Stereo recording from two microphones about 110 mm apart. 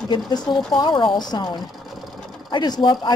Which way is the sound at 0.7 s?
45° left (ahead or behind).